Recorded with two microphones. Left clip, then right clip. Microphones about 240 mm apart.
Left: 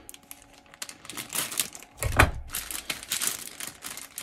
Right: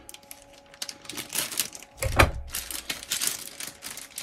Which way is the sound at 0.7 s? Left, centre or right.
Centre.